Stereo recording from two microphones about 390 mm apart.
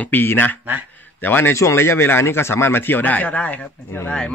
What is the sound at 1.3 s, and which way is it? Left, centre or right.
A man's voice, centre.